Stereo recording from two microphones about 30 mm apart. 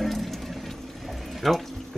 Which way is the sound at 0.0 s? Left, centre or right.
Centre.